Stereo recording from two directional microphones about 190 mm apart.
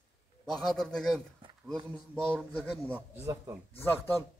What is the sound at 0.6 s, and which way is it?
Speech, centre (ahead or behind).